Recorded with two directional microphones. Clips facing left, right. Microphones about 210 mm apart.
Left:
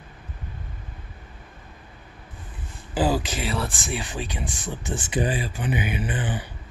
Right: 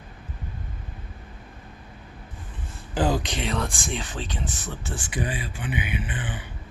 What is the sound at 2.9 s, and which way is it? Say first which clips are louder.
Speech: left 1 dB; 5° left (ahead or behind).